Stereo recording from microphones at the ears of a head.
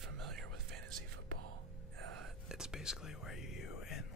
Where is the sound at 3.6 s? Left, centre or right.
Left.